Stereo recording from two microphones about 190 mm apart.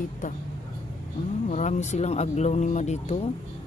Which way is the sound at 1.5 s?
40° left (ahead or behind).